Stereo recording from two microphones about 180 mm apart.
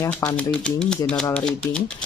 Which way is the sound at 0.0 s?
15° left (ahead or behind).